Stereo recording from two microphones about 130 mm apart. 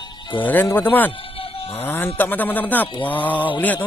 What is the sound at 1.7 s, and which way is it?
Speech, 15° left (ahead or behind).